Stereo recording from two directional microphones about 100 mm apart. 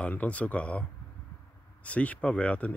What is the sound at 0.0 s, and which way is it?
Speech, 15° left (ahead or behind).